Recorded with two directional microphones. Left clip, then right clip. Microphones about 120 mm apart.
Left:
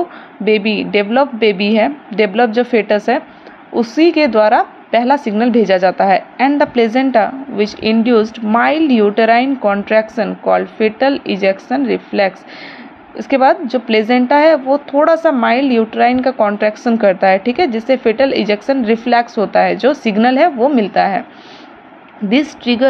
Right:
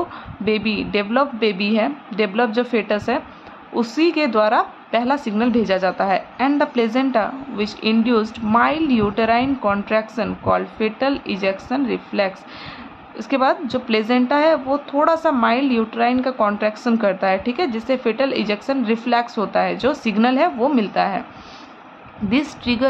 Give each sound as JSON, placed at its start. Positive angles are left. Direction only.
{"t": 0.5, "sound": "a woman's voice", "side_deg": 30}
{"t": 22.3, "sound": "a woman's voice", "side_deg": 25}